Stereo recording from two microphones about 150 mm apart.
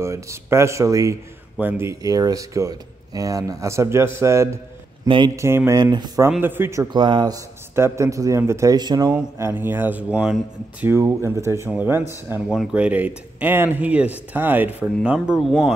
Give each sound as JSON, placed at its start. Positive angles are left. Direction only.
{"t": 0.0, "sound": "speech", "side_deg": -20}
{"t": 5.0, "sound": "speech", "side_deg": -35}
{"t": 5.3, "sound": "speech", "side_deg": -20}
{"t": 6.4, "sound": "speech", "side_deg": -15}
{"t": 7.0, "sound": "speech", "side_deg": -30}
{"t": 9.1, "sound": "speech", "side_deg": -15}
{"t": 12.4, "sound": "speech", "side_deg": 0}